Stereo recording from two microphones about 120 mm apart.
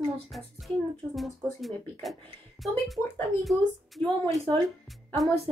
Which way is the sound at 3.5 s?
Centre (ahead or behind).